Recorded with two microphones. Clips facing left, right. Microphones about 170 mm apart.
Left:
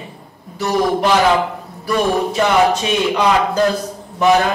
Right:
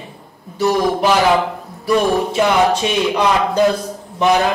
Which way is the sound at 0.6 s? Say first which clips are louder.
Right 1 dB; centre (ahead or behind).